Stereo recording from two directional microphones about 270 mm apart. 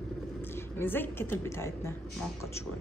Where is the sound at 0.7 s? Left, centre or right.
Centre.